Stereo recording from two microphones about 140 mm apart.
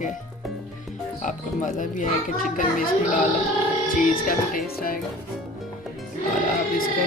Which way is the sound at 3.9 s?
90° left.